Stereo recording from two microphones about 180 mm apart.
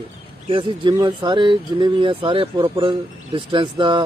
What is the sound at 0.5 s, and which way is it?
Speech, 30° right (ahead or behind).